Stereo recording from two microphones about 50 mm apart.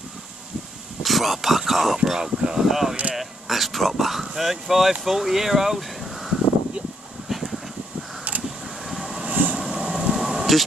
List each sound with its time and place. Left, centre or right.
1.0 s speech: centre
2.0 s speech: centre
7.2 s vehicle: centre
8.8 s vehicle: centre
9.3 s vehicle: right
9.6 s vehicle: centre